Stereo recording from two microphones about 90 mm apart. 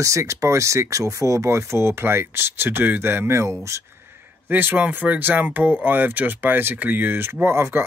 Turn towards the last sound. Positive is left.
turn(degrees=-25)  # may be behind; listen again after turning